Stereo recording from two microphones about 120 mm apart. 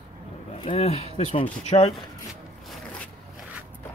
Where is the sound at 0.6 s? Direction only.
55° left (ahead or behind).